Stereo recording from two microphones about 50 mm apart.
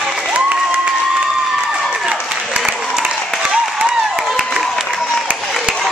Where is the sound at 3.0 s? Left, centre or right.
Centre.